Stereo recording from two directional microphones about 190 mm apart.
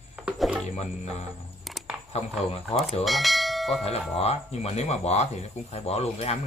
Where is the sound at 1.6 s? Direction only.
Centre (ahead or behind).